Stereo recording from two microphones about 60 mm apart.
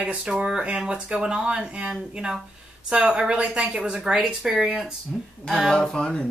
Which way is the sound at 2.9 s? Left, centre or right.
Centre.